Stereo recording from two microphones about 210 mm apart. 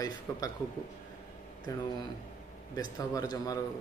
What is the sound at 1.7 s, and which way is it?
Speech, 15° left (ahead or behind).